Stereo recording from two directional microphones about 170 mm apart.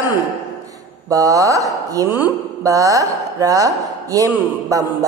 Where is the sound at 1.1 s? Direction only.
20° right (ahead or behind).